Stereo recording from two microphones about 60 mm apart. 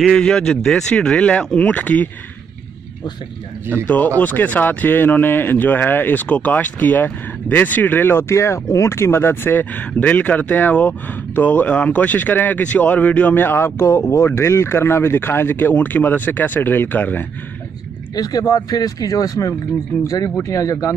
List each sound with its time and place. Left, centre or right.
0.1 s speech: centre; by 2.0 s left
3.8 s speech: left
18.1 s speech: left
20.1 s speech: left